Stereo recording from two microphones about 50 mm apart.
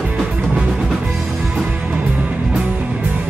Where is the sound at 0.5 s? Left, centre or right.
Centre.